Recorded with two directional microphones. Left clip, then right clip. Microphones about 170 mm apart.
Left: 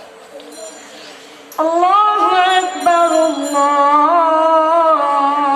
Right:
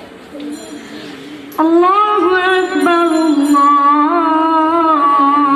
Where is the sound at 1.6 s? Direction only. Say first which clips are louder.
Right 1 dB; 15° left (ahead or behind).